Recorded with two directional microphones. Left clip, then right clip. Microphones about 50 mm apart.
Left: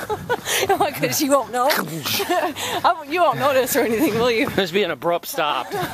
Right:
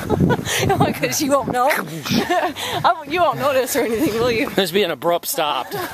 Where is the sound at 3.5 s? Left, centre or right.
Centre.